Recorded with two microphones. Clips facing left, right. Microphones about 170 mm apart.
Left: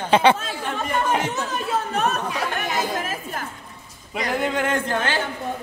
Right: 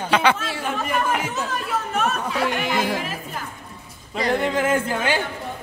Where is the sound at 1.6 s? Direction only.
35° left (ahead or behind).